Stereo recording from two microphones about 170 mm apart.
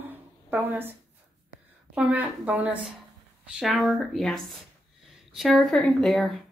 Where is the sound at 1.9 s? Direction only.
10° right (ahead or behind).